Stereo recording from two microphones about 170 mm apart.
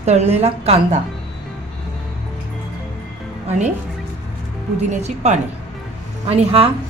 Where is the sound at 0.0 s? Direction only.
40° right (ahead or behind).